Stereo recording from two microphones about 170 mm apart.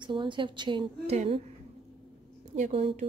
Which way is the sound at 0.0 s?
30° right (ahead or behind).